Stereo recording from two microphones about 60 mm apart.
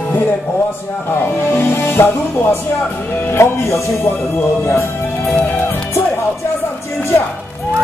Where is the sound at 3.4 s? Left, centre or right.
Left.